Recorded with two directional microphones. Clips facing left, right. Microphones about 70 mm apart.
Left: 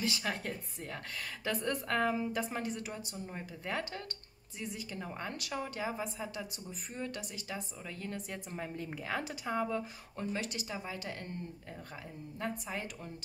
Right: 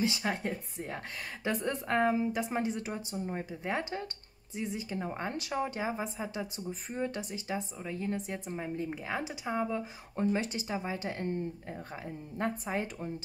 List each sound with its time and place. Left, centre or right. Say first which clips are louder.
0.0 s a woman's voice: right 4 dB; right
10.1 s a woman's voice: right 7 dB; right
12.4 s a woman's voice: right 5 dB; right
12.7 s a woman's voice: right 6 dB; right